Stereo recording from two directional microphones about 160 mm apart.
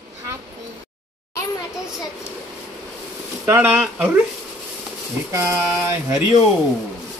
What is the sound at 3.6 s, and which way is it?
Speech, 5° right (ahead or behind).